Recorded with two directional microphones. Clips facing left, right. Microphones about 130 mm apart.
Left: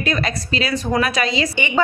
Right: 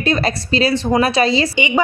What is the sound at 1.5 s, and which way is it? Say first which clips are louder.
Speech: right 3 dB; 15° right (ahead or behind).